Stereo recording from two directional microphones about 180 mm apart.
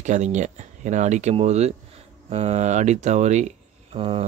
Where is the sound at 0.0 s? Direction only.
40° right (ahead or behind).